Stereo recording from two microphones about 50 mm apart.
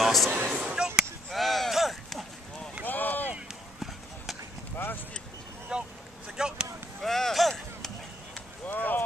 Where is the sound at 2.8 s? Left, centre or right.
Left.